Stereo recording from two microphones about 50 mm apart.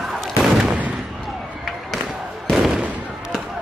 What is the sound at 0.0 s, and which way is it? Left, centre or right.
Gunshot, centre.